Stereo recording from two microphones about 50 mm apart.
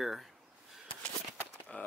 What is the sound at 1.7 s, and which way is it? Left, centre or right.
Speech, left.